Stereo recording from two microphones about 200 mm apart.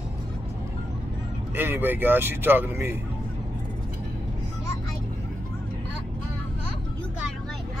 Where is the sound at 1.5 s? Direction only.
10° right (ahead or behind).